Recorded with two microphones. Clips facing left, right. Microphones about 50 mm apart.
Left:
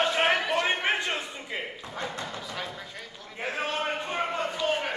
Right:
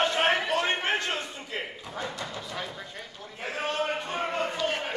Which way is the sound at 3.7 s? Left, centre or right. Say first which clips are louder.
Right 1 dB; left.